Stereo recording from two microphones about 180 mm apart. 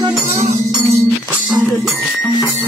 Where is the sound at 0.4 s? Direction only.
15° right (ahead or behind).